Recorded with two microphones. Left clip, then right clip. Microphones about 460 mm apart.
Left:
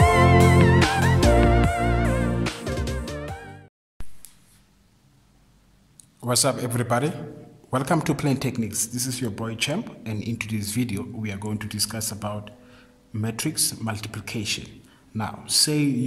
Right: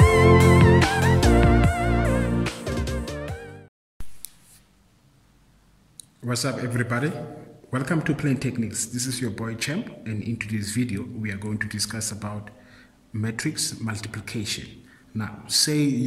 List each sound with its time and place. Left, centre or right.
0.0 s music: centre
5.9 s a man's voice: centre